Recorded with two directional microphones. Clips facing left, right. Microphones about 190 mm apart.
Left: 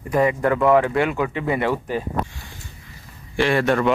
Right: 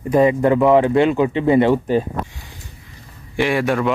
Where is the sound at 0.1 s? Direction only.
20° right (ahead or behind).